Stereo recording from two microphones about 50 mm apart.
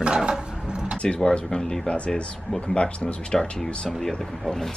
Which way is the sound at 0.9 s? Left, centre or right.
Centre.